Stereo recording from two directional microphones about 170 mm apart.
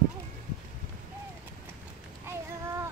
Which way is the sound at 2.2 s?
15° right (ahead or behind).